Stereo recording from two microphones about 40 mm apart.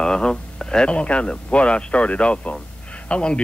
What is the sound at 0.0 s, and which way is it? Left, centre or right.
Speech, centre.